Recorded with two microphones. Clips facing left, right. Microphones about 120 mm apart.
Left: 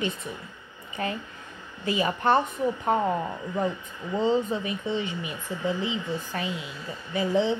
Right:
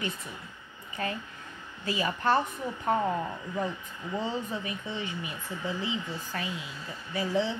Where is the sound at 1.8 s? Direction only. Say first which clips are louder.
Left 4 dB; 20° left (ahead or behind).